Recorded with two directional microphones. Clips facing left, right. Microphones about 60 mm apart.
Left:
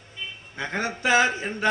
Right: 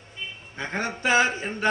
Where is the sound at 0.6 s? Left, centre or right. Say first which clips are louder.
Left 1 dB; right.